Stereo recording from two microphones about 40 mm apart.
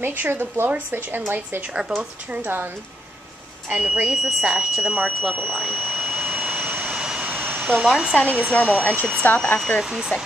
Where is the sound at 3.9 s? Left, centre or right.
Right.